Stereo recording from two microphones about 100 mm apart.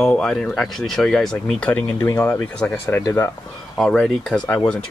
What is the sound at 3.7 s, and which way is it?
Speech, 5° left (ahead or behind).